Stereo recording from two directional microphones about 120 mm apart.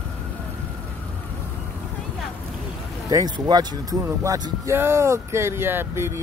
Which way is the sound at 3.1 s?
35° right (ahead or behind).